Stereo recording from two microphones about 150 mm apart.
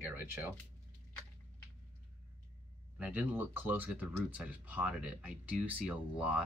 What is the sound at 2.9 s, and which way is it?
Speech, 10° right (ahead or behind).